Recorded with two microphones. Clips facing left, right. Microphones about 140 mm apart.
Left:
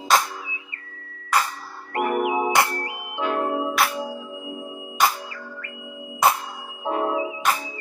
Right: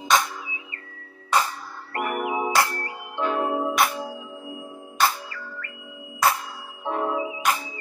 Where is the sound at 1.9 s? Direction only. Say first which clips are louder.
Left 4 dB; 20° left (ahead or behind).